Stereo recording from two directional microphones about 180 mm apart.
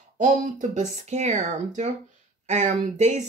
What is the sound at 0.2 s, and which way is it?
Speech, 40° right (ahead or behind).